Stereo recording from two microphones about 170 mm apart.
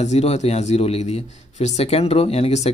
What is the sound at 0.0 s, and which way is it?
Speech, 40° left (ahead or behind).